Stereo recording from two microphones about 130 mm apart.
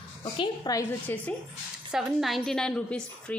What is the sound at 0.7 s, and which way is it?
Speech, 25° left (ahead or behind).